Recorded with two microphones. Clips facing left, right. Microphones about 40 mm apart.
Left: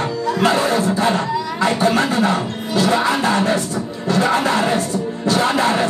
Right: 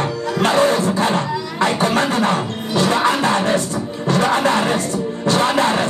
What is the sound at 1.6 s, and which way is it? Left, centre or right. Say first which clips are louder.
Beatboxing: even; right.